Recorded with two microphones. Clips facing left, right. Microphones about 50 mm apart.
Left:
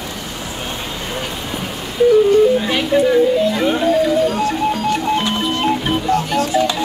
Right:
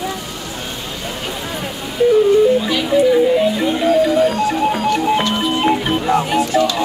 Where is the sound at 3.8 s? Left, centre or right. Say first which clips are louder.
Right 3 dB; centre.